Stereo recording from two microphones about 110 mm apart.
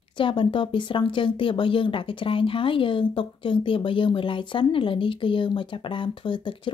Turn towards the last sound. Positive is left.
turn(degrees=50)  # may be behind; listen again after turning